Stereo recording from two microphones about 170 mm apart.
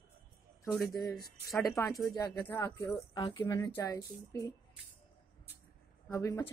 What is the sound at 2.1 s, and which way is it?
Speech, 15° left (ahead or behind).